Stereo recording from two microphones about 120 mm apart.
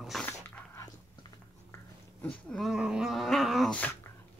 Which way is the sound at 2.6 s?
5° right (ahead or behind).